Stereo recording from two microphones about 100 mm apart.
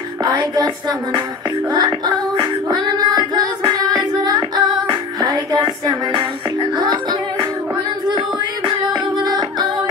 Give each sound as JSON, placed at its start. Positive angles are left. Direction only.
{"t": 0.2, "sound": "music", "side_deg": -40}
{"t": 8.6, "sound": "music", "side_deg": -50}